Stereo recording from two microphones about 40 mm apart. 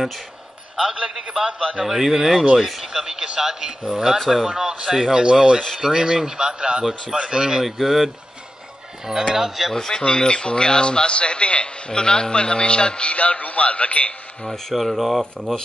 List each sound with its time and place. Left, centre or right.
0.9 s a man's voice: right
7.6 s speech: centre
9.8 s a man's voice: centre; by 14.1 s left
14.7 s speech: centre
15.3 s a man's voice: left